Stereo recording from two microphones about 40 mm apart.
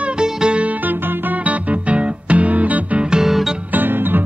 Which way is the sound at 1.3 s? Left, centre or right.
Right.